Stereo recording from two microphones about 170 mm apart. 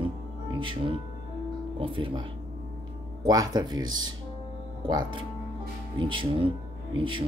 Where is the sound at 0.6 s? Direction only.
30° right (ahead or behind).